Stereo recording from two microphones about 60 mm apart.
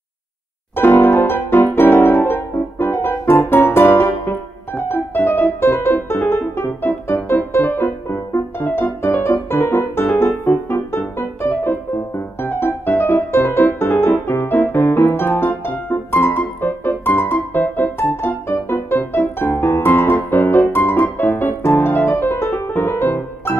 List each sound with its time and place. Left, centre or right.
0.7 s music: left